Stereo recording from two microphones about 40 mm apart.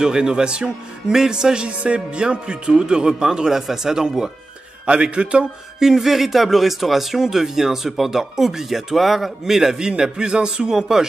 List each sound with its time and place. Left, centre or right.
0.0 s speech: centre
4.8 s speech: right
5.8 s speech: centre